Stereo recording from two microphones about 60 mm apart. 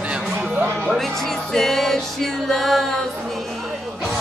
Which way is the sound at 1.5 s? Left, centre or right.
Centre.